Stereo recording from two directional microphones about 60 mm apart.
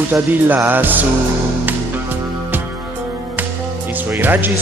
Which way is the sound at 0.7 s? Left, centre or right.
Right.